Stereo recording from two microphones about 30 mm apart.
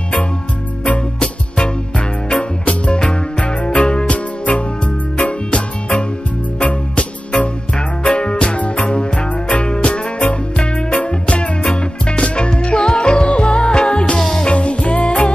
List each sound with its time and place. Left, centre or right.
1.2 s music: left
3.0 s music: left
7.3 s music: left